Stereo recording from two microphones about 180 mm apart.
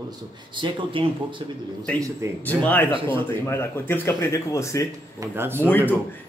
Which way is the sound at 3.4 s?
15° left (ahead or behind).